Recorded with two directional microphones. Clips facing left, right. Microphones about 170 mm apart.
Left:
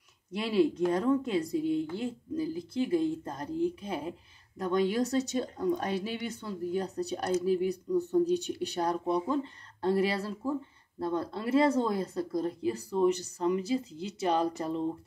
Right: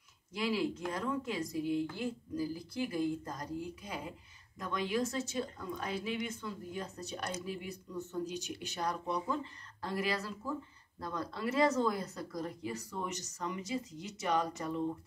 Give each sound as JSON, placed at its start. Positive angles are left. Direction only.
{"t": 0.4, "sound": "speech", "side_deg": 30}